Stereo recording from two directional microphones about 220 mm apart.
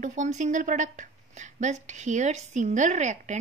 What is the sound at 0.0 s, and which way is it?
Speech, 35° right (ahead or behind).